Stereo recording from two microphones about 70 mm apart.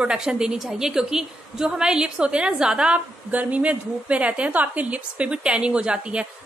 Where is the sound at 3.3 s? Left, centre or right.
Right.